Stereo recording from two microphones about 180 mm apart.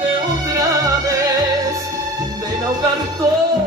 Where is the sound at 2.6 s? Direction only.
20° right (ahead or behind).